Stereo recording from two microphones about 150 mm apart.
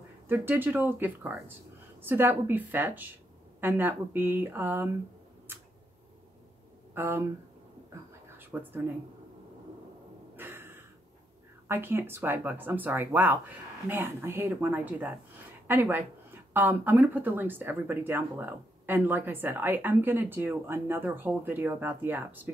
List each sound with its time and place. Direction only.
0.3 s speech: 15° right (ahead or behind)
6.9 s speech: 15° right (ahead or behind)
8.4 s speech: 15° right (ahead or behind)
10.3 s a sound: 15° right (ahead or behind)
11.6 s speech: 15° right (ahead or behind)